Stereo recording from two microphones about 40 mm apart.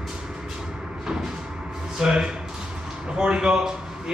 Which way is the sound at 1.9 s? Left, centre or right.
Centre.